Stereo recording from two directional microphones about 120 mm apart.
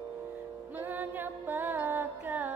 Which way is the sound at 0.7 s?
15° right (ahead or behind).